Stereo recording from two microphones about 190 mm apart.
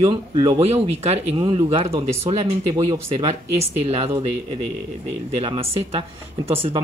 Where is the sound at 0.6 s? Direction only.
35° right (ahead or behind).